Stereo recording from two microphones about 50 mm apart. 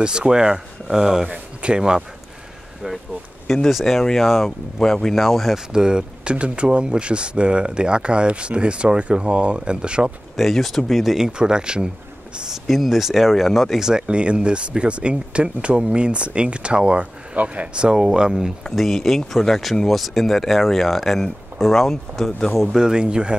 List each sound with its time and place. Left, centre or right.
0.0 s speech: centre
1.3 s a sound: right
1.8 s speech: centre
3.4 s speech: centre
5.7 s speech: centre
10.3 s speech: centre
12.6 s speech: centre
13.8 s speech: centre
17.8 s speech: centre
18.6 s speech: centre
22.8 s speech: centre